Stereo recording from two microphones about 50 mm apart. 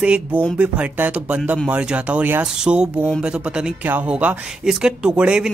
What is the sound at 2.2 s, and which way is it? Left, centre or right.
Speech, right.